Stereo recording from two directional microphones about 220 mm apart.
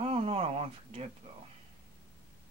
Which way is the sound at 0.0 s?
25° right (ahead or behind).